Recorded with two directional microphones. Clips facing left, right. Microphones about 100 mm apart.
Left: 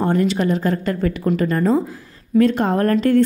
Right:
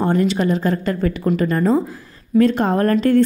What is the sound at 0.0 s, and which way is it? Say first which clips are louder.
A woman's voice: right 1 dB; 20° right (ahead or behind).